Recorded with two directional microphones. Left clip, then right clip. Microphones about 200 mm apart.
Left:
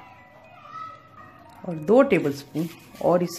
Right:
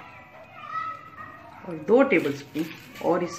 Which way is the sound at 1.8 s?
60° left (ahead or behind).